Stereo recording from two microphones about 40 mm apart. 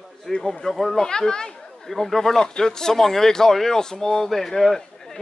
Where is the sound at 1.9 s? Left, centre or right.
Centre.